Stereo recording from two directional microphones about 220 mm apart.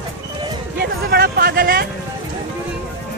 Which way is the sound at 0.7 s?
45° right (ahead or behind).